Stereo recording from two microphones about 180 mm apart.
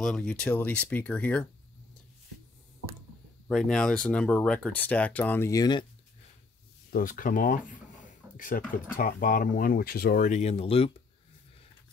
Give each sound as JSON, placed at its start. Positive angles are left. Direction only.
{"t": 0.0, "sound": "speech", "side_deg": 5}
{"t": 3.4, "sound": "speech", "side_deg": 5}
{"t": 6.9, "sound": "a sound", "side_deg": 50}
{"t": 8.9, "sound": "speech", "side_deg": 50}